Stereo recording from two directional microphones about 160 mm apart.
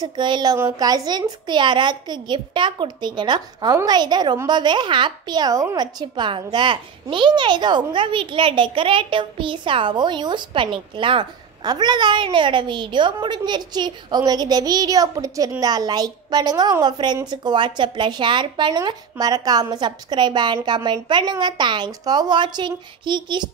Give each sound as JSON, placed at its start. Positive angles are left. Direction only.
{"t": 0.0, "sound": "a woman's voice", "side_deg": -30}